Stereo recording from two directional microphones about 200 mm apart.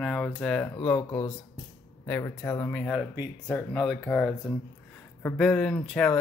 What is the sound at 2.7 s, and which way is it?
Speech, centre (ahead or behind).